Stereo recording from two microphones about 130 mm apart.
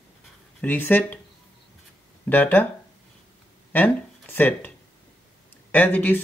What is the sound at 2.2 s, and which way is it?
Speech, 15° left (ahead or behind).